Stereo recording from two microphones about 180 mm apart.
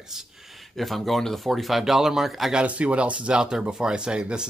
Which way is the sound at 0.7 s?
Centre (ahead or behind).